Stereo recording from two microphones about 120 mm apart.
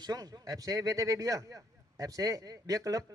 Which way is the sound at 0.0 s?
30° right (ahead or behind).